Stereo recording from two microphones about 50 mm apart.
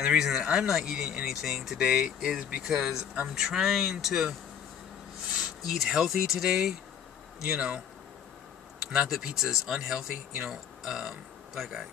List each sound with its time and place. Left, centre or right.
0.0 s speech: centre
5.7 s speech: centre
8.9 s speech: centre